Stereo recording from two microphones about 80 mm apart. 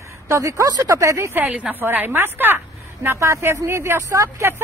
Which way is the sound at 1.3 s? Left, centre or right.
Right.